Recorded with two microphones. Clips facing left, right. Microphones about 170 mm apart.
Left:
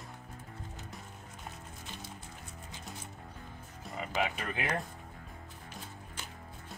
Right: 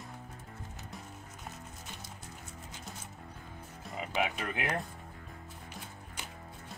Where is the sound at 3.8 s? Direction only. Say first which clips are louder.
Even; 5° right (ahead or behind).